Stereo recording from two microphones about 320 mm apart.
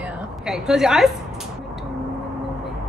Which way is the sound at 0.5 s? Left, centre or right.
Centre.